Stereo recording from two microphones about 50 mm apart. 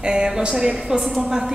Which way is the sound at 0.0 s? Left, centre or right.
Centre.